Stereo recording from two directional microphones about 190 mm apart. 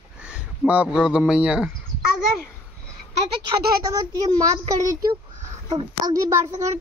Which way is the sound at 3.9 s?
20° right (ahead or behind).